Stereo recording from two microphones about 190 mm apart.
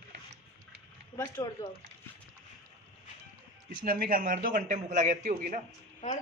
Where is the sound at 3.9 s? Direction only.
50° right (ahead or behind).